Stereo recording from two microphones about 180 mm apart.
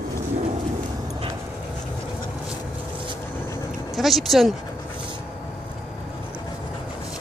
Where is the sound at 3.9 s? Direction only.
Centre (ahead or behind).